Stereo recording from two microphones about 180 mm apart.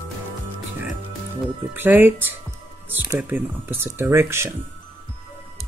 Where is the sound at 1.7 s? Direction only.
10° right (ahead or behind).